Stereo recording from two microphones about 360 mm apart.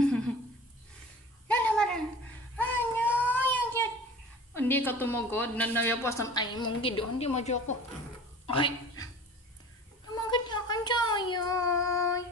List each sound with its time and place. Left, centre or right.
1.5 s a sound: centre
2.5 s child singing: centre
4.6 s a woman's voice: centre
10.1 s child singing: centre